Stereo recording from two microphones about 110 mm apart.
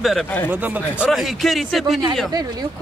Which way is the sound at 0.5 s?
15° right (ahead or behind).